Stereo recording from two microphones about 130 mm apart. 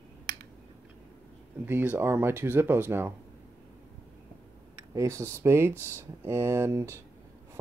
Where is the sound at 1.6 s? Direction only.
15° right (ahead or behind).